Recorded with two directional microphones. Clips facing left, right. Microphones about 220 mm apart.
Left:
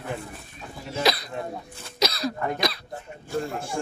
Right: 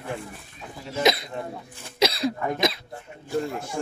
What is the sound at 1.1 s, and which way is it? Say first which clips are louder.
Speech: right 3 dB; 20° right (ahead or behind).